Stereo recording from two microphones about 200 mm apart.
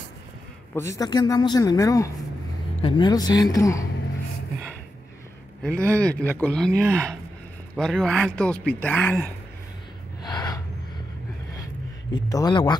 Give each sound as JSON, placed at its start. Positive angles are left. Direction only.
{"t": 0.7, "sound": "a man's voice", "side_deg": 15}
{"t": 5.6, "sound": "a man's voice", "side_deg": 5}
{"t": 6.7, "sound": "speech", "side_deg": -15}
{"t": 7.7, "sound": "a man's voice", "side_deg": 0}
{"t": 10.2, "sound": "gasp", "side_deg": 20}
{"t": 12.1, "sound": "a woman's voice", "side_deg": 20}